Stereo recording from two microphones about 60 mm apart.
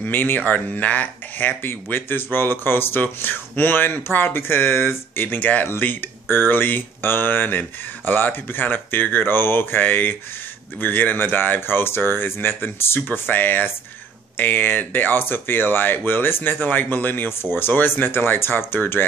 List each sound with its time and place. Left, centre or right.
0.0 s speech: left